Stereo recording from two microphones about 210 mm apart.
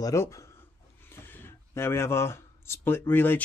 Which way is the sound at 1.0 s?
10° left (ahead or behind).